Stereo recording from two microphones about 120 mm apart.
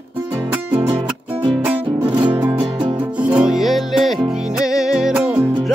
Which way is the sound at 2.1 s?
40° right (ahead or behind).